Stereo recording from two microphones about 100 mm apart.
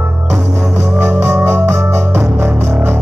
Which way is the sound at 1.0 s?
20° right (ahead or behind).